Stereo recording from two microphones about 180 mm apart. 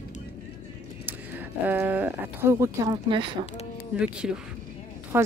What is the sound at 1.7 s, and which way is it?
Speech, 10° right (ahead or behind).